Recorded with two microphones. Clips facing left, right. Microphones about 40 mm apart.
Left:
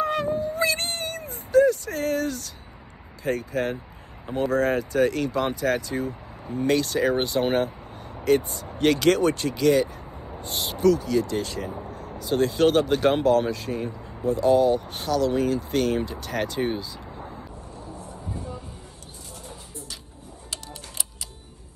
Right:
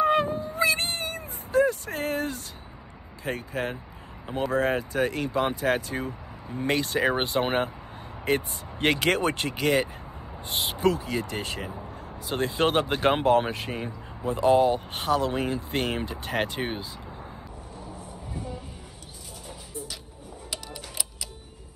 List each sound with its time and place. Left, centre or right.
0.0 s cat: right
1.5 s a sound: right
3.3 s speech: right
6.5 s speech: right
12.0 s vehicle: right
12.4 s speech: right